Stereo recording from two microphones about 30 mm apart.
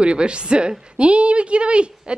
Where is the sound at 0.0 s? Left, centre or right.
Right.